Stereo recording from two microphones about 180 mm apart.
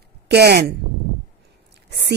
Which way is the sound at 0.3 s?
60° right (ahead or behind).